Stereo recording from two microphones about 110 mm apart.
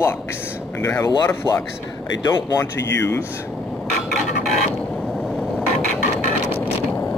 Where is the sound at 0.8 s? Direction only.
30° left (ahead or behind).